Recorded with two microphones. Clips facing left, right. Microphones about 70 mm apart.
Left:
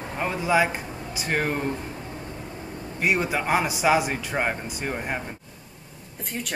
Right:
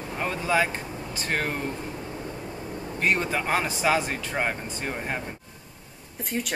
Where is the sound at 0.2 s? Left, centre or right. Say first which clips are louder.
Left 2 dB; centre.